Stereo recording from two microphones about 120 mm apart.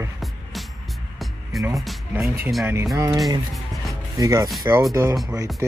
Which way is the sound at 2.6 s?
25° right (ahead or behind).